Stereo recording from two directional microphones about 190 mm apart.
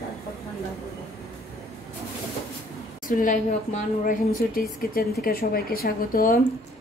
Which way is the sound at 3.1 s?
45° left (ahead or behind).